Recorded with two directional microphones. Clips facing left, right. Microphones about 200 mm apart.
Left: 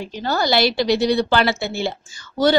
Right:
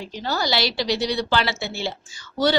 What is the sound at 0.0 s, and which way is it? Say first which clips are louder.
A woman's voice: left 4 dB; 55° left (ahead or behind).